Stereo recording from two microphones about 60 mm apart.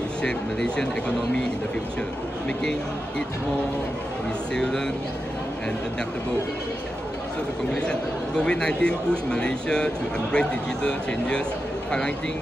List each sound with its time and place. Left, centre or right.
0.2 s speech: centre
4.6 s speech: centre
7.7 s speech: centre